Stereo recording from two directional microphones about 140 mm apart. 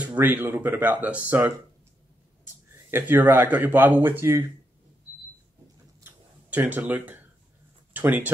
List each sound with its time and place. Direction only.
0.0 s speech: 10° right (ahead or behind)
2.9 s speech: 15° right (ahead or behind)
6.0 s a sound: 15° right (ahead or behind)
7.9 s speech: 15° right (ahead or behind)